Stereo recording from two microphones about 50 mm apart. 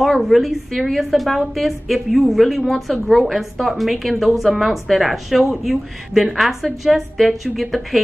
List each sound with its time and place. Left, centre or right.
0.0 s speech: centre